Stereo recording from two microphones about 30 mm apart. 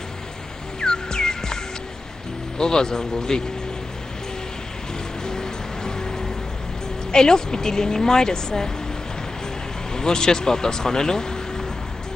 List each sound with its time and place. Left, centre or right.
0.7 s music: left
2.6 s a woman's voice: left
5.2 s music: left
7.1 s a woman's voice: left
9.9 s speech: left